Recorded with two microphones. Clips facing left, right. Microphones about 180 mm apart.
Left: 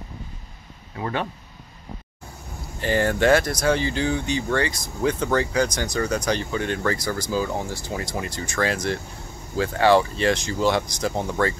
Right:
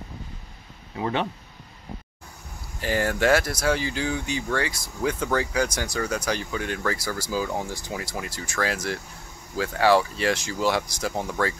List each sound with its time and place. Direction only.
0.9 s speech: 20° right (ahead or behind)
2.8 s speech: 5° right (ahead or behind)